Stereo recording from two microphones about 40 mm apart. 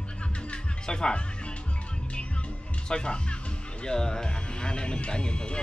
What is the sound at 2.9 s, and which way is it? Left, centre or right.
Speech, left.